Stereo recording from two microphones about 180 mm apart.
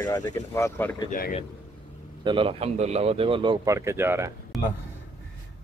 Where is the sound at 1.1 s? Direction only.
45° left (ahead or behind).